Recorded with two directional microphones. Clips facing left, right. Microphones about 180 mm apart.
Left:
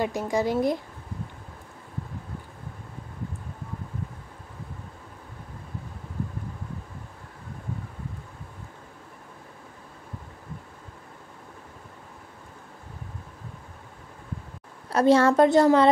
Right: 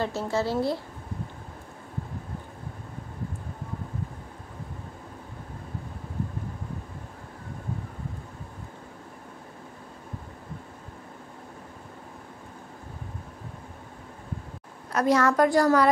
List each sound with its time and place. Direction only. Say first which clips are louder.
0.0 s speech: left 2 dB; 15° left (ahead or behind)
14.9 s a woman's voice: left 4 dB; 30° left (ahead or behind)